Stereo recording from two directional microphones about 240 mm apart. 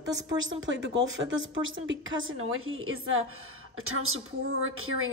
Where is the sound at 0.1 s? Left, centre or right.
Right.